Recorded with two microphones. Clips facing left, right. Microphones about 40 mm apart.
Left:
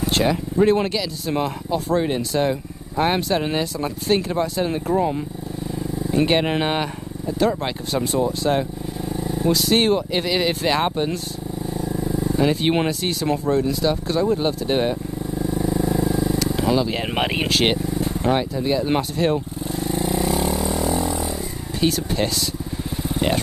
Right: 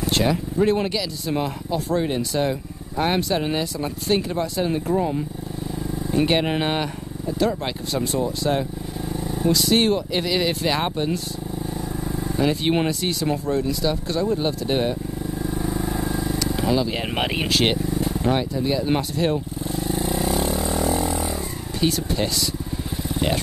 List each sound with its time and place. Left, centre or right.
0.0 s speech: centre
12.4 s speech: centre
16.1 s vehicle: centre
21.0 s vehicle: right
21.7 s speech: centre
23.1 s vehicle: centre